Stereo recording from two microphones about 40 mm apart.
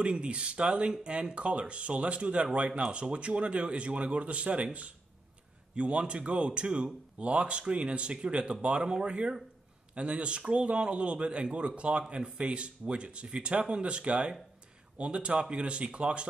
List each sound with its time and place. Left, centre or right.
0.0 s speech: right
5.8 s speech: right